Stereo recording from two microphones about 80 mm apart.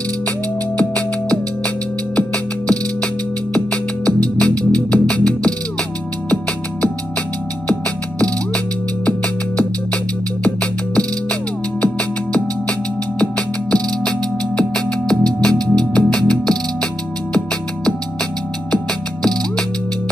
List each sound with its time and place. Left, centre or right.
0.7 s music: centre
10.4 s music: centre